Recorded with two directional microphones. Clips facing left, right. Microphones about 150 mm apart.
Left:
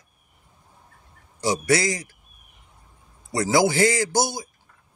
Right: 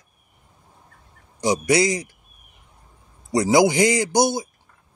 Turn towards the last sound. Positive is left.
turn(degrees=-20)  # may be behind; listen again after turning